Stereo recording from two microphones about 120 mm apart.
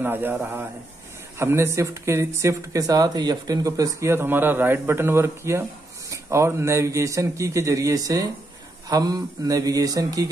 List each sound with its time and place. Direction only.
0.0 s a man's voice: 15° right (ahead or behind)